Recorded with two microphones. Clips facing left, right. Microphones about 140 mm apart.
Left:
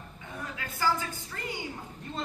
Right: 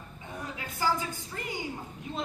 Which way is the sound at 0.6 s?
20° right (ahead or behind).